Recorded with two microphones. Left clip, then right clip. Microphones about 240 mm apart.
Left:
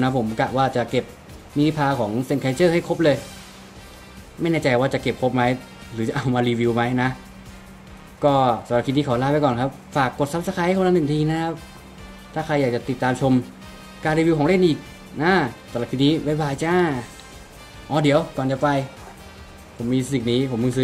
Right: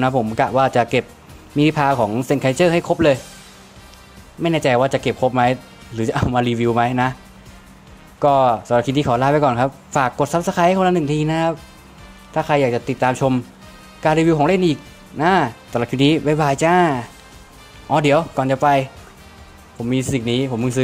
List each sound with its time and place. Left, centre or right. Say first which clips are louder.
0.0 s speech: right 4 dB; right
4.4 s speech: right 4 dB; right
8.2 s speech: right 4 dB; right
19.9 s speech: right 2 dB; right